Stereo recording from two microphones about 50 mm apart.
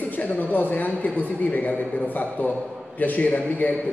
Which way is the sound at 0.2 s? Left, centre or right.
Left.